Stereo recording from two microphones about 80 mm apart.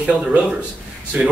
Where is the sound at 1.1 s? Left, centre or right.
Centre.